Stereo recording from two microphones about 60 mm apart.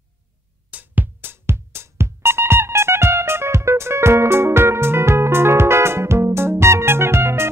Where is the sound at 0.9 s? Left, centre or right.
Right.